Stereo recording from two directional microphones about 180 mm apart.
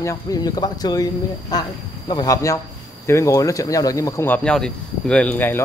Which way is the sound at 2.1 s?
20° left (ahead or behind).